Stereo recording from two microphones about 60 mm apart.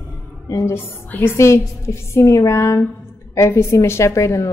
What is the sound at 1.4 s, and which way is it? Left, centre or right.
A woman's voice, left.